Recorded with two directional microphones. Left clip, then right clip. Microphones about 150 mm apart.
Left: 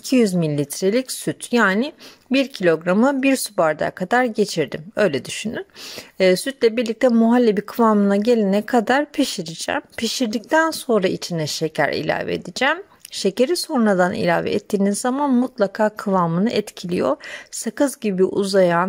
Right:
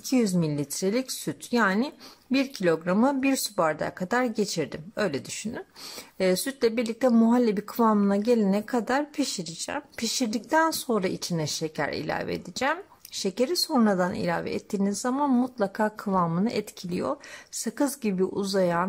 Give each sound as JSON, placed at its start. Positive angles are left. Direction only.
{"t": 0.0, "sound": "speech", "side_deg": 35}
{"t": 6.1, "sound": "speech", "side_deg": 30}
{"t": 15.2, "sound": "speech", "side_deg": 25}